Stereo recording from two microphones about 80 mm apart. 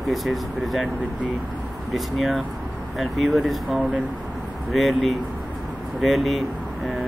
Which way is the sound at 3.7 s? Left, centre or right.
Centre.